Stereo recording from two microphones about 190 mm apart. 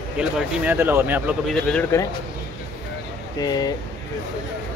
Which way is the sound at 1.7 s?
5° left (ahead or behind).